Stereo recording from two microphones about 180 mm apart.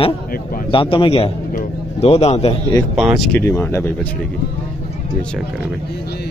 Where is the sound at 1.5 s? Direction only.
35° left (ahead or behind).